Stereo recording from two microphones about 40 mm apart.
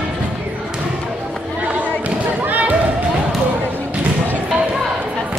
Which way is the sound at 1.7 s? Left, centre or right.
Right.